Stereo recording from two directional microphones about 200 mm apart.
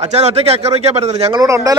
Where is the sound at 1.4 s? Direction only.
15° right (ahead or behind).